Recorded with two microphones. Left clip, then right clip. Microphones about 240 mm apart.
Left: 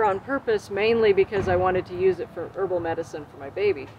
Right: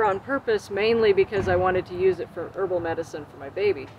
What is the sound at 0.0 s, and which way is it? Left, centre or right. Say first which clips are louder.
Speech: even; centre.